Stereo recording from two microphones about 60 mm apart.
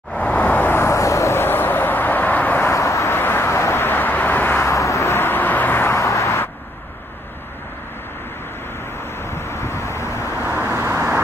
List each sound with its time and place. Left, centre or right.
0.1 s vehicle: left
1.3 s vehicle: left
2.7 s vehicle: left
3.1 s vehicle: left
4.6 s vehicle: left
5.0 s vehicle: left
5.9 s vehicle: left
9.2 s vehicle: left
10.4 s vehicle: right